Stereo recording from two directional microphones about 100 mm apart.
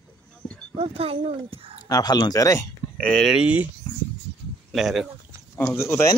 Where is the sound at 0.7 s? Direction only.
75° right (ahead or behind).